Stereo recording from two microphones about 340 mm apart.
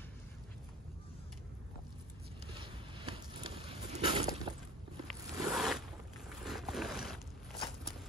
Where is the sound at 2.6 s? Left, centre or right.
Centre.